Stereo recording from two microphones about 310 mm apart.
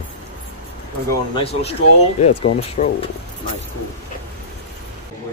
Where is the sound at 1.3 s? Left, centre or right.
Centre.